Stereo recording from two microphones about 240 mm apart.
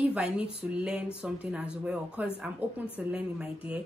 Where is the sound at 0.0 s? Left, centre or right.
Centre.